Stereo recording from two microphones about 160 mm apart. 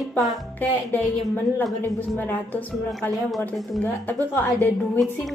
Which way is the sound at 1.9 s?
10° left (ahead or behind).